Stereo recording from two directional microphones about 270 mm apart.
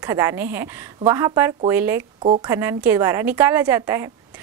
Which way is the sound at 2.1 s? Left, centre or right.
Right.